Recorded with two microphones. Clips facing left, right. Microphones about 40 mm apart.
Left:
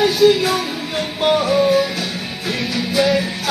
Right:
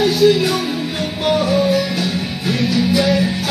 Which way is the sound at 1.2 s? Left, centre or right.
Centre.